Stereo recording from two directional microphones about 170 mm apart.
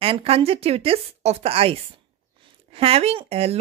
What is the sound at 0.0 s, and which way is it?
Speech, 35° right (ahead or behind).